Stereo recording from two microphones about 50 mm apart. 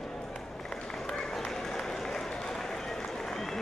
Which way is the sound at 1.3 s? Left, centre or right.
Centre.